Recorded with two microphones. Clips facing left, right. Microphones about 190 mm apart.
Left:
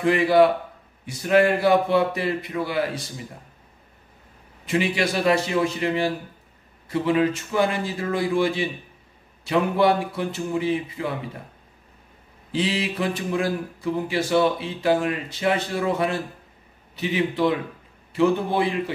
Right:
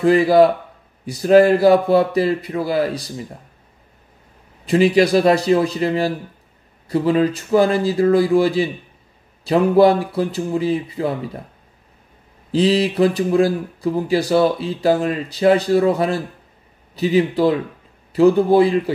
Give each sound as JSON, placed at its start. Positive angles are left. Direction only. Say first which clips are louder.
{"t": 0.0, "sound": "speech", "louder": "right 5 dB", "side_deg": -35}
{"t": 4.6, "sound": "speech", "louder": "right 9 dB", "side_deg": -35}
{"t": 12.5, "sound": "speech", "louder": "right 9 dB", "side_deg": -35}